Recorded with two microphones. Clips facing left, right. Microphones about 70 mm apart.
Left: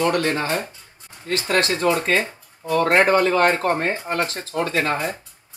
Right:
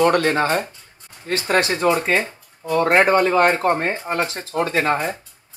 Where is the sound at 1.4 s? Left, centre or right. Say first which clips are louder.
Right 2 dB; centre.